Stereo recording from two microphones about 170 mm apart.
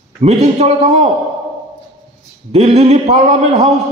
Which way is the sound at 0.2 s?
40° right (ahead or behind).